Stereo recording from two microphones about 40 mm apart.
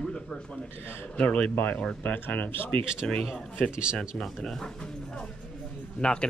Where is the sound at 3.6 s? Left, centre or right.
Right.